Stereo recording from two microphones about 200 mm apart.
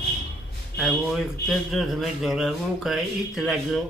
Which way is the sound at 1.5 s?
Centre (ahead or behind).